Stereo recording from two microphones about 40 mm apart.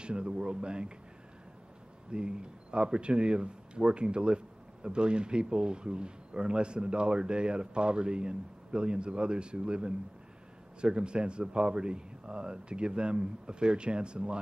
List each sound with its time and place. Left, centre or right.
0.0 s speech: right
2.0 s speech: right